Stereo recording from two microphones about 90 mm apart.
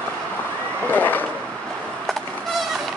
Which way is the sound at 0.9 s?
20° left (ahead or behind).